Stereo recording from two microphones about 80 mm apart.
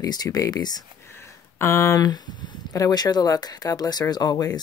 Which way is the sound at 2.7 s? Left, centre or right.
Left.